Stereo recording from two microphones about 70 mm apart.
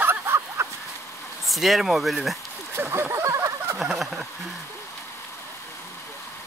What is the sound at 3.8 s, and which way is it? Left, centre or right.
Speech, centre.